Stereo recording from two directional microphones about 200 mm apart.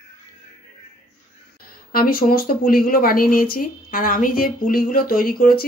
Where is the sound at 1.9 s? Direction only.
45° left (ahead or behind).